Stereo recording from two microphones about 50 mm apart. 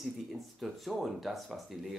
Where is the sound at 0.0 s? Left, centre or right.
Centre.